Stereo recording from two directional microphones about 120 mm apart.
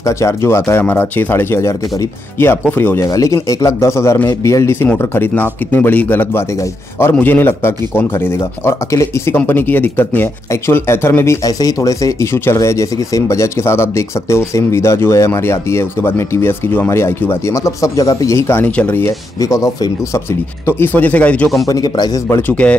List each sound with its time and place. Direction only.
0.0 s speech: 25° left (ahead or behind)
3.1 s speech: 25° left (ahead or behind)
19.4 s speech: 30° left (ahead or behind)
20.6 s speech: 15° left (ahead or behind)
21.6 s speech: 30° left (ahead or behind)
22.5 s speech: 10° left (ahead or behind)